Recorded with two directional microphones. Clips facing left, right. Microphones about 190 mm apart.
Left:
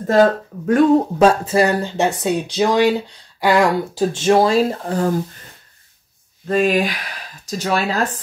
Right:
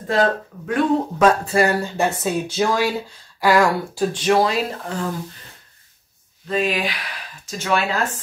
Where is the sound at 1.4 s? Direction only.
20° left (ahead or behind); by 5.1 s 35° left (ahead or behind).